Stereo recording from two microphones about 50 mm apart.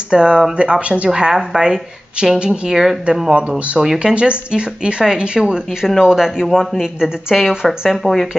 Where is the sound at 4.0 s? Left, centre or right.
Right.